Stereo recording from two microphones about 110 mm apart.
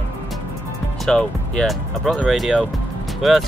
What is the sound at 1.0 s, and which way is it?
Speech, 5° left (ahead or behind).